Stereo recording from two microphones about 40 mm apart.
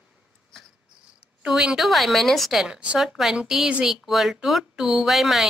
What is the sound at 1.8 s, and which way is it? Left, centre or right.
Speech, centre.